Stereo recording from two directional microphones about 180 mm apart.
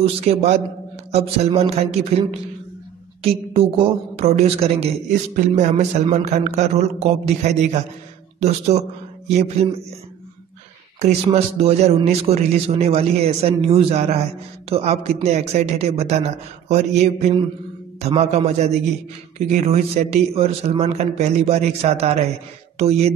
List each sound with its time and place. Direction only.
0.0 s speech: 35° right (ahead or behind)
11.2 s speech: 35° right (ahead or behind)